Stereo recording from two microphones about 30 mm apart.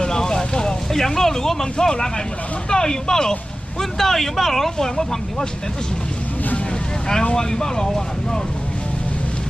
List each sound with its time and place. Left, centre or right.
0.0 s vehicle: left
0.9 s speech: centre
4.0 s speech: centre
7.3 s speech: left